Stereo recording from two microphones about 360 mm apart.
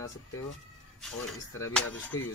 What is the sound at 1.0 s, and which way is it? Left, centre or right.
Speech, centre.